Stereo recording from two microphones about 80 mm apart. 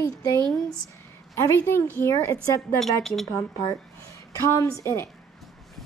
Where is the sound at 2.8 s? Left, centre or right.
Centre.